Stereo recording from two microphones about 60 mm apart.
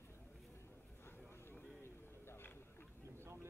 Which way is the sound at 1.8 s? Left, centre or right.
Left.